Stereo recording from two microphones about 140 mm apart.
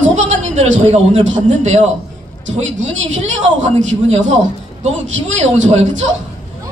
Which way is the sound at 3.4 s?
60° right (ahead or behind).